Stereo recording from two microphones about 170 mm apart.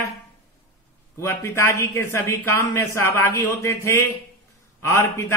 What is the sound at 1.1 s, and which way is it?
Speech, 15° left (ahead or behind).